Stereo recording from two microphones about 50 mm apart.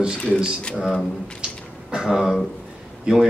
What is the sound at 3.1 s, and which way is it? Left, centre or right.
Speech, centre.